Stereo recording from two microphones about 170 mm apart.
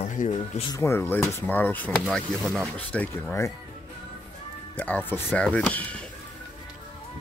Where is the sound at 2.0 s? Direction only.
Centre (ahead or behind).